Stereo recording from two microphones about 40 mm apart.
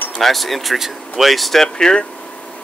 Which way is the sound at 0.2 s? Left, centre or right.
Centre.